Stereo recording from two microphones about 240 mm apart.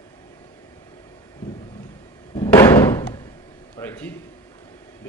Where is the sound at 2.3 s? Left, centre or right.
Centre.